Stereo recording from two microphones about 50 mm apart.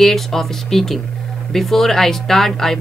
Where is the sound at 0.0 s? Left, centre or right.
Centre.